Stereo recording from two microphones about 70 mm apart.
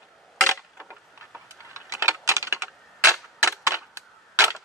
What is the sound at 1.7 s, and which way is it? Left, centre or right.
Typing, right.